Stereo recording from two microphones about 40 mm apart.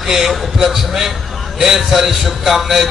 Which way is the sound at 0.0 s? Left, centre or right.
Centre.